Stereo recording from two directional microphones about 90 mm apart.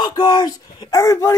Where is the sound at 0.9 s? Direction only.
35° left (ahead or behind).